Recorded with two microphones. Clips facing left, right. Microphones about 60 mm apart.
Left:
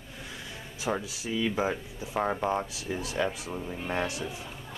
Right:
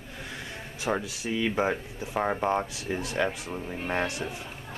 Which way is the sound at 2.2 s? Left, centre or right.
Centre.